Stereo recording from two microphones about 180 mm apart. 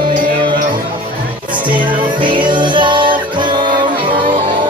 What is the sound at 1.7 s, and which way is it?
Music, 25° right (ahead or behind).